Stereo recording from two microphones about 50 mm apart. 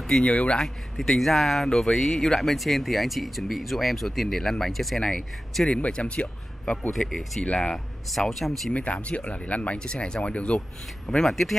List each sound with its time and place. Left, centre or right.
0.2 s speech: left
0.9 s speech: centre
5.8 s speech: left
7.1 s speech: centre
8.7 s speech: left
11.1 s speech: centre